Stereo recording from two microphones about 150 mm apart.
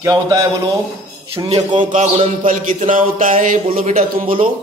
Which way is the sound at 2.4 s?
60° right (ahead or behind).